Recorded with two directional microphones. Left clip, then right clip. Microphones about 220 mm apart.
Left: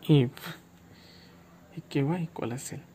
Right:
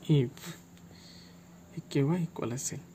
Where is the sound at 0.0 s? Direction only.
15° left (ahead or behind).